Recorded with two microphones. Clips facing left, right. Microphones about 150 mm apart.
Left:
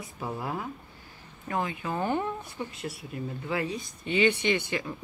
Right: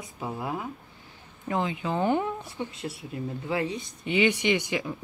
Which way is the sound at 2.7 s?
25° right (ahead or behind).